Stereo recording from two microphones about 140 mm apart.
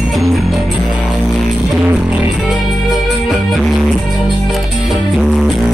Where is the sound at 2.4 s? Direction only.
Centre (ahead or behind).